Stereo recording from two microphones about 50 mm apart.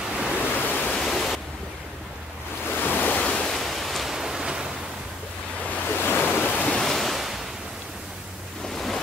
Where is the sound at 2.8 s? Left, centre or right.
Left.